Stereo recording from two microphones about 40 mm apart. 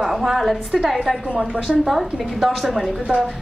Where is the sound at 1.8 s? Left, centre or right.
Centre.